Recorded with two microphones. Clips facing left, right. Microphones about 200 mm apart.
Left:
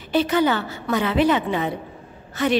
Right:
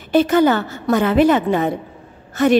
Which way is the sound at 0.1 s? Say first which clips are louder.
Right 5 dB; 45° right (ahead or behind).